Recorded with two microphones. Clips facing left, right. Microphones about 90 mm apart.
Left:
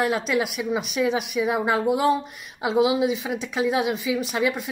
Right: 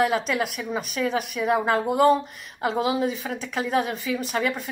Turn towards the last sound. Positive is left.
turn(degrees=5)  # may be behind; listen again after turning